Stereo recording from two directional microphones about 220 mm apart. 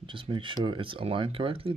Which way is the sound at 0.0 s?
20° right (ahead or behind).